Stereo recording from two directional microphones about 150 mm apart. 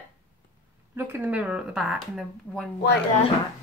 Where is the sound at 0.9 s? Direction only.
15° right (ahead or behind); by 2.7 s 5° left (ahead or behind).